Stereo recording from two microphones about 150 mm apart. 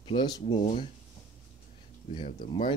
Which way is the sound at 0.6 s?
45° left (ahead or behind).